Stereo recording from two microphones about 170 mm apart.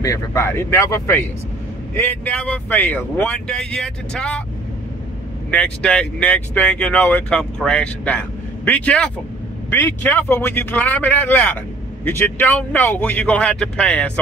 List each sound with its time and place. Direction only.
0.0 s speech: 15° left (ahead or behind)
5.5 s speech: 5° left (ahead or behind)